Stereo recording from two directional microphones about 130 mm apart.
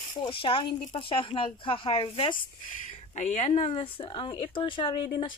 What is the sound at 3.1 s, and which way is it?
Speech, 65° left (ahead or behind).